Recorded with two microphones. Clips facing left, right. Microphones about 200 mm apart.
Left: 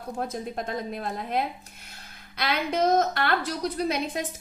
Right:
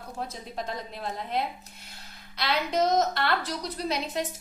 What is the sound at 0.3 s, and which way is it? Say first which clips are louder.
A woman's voice: left 4 dB; 50° left (ahead or behind).